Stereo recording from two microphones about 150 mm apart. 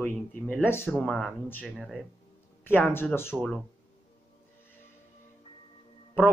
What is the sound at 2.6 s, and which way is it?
Music, 15° left (ahead or behind).